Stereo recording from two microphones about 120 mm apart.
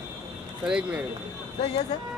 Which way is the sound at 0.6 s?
5° right (ahead or behind).